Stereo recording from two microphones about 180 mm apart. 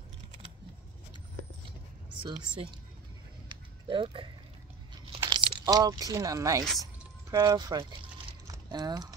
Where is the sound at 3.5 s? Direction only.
25° right (ahead or behind).